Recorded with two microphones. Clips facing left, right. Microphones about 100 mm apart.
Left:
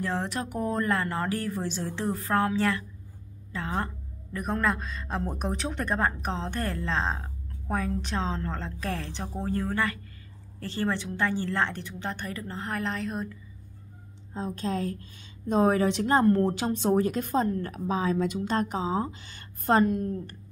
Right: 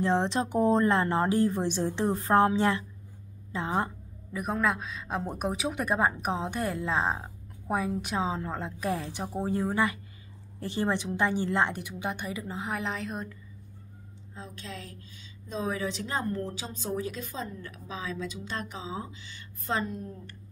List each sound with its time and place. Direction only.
0.0 s speech: 20° right (ahead or behind)
3.5 s a sound: 20° right (ahead or behind)
4.4 s a woman's voice: centre (ahead or behind)
14.3 s a woman's voice: 40° left (ahead or behind); by 20.1 s 60° left (ahead or behind)